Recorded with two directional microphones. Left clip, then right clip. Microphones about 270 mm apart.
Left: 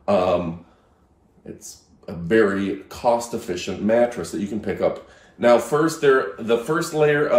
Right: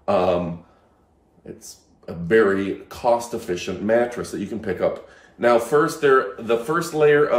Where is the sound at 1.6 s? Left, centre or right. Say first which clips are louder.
Even; centre.